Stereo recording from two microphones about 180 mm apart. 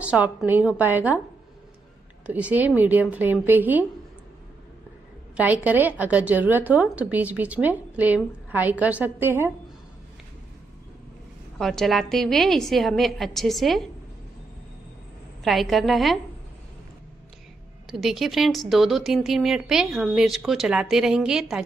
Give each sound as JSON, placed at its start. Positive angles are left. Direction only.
{"t": 0.0, "sound": "a woman's voice", "side_deg": -5}
{"t": 2.2, "sound": "a woman's voice", "side_deg": -10}
{"t": 5.3, "sound": "a woman's voice", "side_deg": -10}
{"t": 11.5, "sound": "speech", "side_deg": 0}
{"t": 15.4, "sound": "speech", "side_deg": 0}
{"t": 17.8, "sound": "speech", "side_deg": 0}